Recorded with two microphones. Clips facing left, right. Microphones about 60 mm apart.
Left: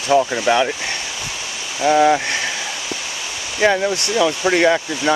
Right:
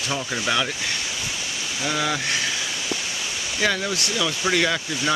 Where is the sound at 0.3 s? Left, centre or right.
Left.